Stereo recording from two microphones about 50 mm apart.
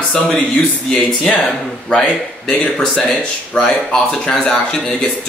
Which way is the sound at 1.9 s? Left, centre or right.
Centre.